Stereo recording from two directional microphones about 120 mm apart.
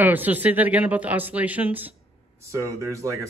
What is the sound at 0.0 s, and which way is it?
Speech, 15° right (ahead or behind).